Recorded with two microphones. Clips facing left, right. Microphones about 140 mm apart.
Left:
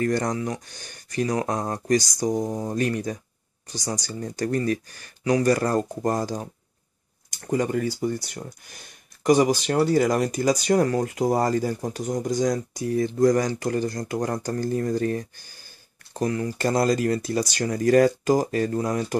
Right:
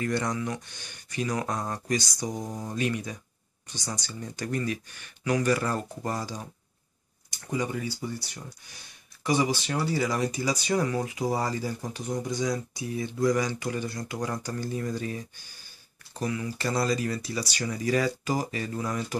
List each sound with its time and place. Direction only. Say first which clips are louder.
0.0 s speech: left 5 dB; 40° left (ahead or behind)
2.4 s speech: left 8 dB; 30° left (ahead or behind)
2.7 s speech: left 5 dB; 45° left (ahead or behind)